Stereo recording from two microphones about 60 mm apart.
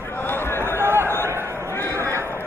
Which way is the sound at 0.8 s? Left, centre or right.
Right.